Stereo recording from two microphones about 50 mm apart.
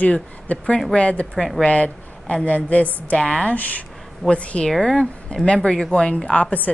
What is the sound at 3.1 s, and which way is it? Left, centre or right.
Speech, left.